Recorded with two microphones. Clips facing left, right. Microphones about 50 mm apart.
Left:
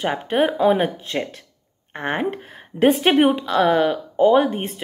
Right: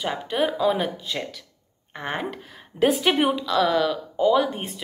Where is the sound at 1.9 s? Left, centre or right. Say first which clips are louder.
Left 6 dB; left.